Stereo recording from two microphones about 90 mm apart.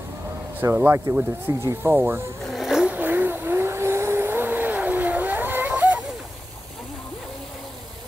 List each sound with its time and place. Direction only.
0.8 s speech: 30° right (ahead or behind)
2.4 s vehicle: centre (ahead or behind)
2.9 s vehicle: 20° right (ahead or behind)